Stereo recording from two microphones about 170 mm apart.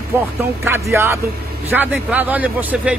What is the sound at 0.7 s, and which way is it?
A man's voice, 15° right (ahead or behind).